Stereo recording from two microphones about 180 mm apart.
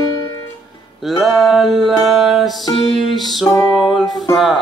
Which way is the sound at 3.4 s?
20° left (ahead or behind).